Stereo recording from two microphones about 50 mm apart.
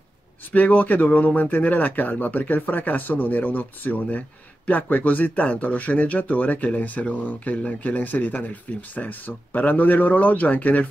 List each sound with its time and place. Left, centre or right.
0.5 s speech: left